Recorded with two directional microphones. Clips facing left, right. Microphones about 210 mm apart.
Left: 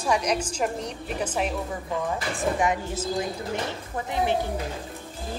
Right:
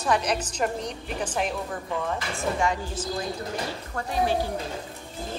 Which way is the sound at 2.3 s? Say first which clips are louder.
Left 2 dB; 20° left (ahead or behind).